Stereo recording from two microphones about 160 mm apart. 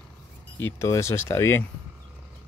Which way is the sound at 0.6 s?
15° left (ahead or behind).